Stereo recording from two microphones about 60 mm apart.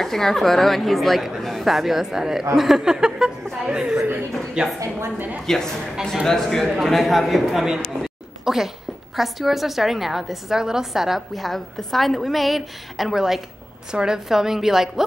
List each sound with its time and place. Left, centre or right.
0.0 s a woman's voice: centre
5.5 s a woman's voice: centre
8.0 s a sound: centre
9.1 s a woman's voice: centre